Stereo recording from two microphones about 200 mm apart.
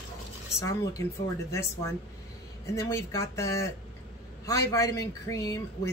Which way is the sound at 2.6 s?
15° left (ahead or behind).